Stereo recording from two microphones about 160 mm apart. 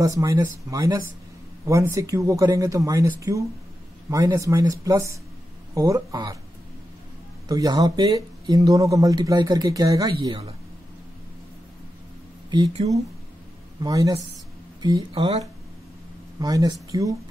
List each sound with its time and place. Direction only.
0.0 s speech: 20° right (ahead or behind)
7.4 s speech: 25° right (ahead or behind)
12.8 s speech: 30° right (ahead or behind)
13.7 s speech: 20° right (ahead or behind)
16.3 s speech: 20° right (ahead or behind)